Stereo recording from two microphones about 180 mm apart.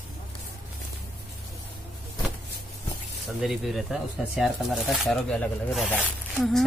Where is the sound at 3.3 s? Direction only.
Centre (ahead or behind).